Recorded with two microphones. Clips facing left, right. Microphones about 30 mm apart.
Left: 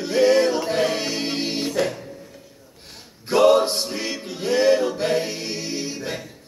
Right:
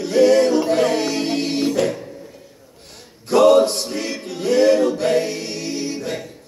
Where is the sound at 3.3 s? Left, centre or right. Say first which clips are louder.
Right 3 dB; centre.